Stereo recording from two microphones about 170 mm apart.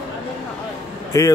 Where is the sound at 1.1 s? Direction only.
20° left (ahead or behind).